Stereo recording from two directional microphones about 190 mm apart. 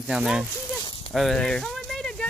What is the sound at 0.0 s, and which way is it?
Speech, centre (ahead or behind).